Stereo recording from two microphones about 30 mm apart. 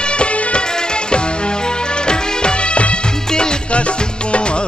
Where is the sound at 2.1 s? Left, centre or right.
Left.